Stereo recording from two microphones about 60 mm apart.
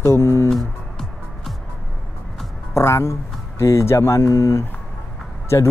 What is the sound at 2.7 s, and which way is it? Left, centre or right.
Speech, left.